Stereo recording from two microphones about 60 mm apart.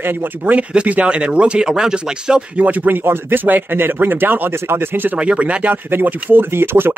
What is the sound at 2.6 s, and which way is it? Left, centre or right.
Speech, right.